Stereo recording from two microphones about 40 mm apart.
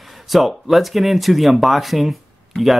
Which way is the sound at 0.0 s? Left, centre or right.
Centre.